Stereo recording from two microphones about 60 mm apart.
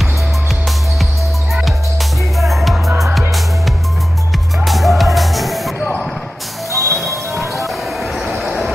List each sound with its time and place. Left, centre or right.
1.5 s music: centre
6.7 s music: right
8.0 s train: centre